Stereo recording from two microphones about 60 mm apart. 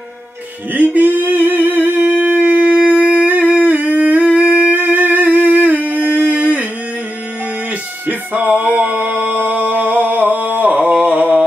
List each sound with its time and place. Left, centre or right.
0.7 s singing: right
4.4 s humming: right
8.1 s music: right
9.7 s a sound: right